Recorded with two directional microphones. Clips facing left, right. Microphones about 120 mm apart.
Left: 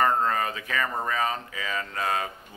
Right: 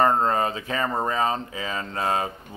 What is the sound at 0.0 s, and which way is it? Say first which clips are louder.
Speech: right 3 dB; 30° right (ahead or behind).